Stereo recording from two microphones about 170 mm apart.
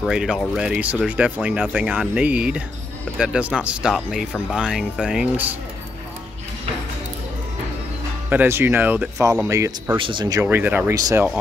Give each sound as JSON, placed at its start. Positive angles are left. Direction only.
{"t": 0.0, "sound": "speech", "side_deg": -5}
{"t": 8.3, "sound": "speech", "side_deg": -10}
{"t": 9.9, "sound": "speech", "side_deg": -30}
{"t": 10.4, "sound": "speech", "side_deg": -10}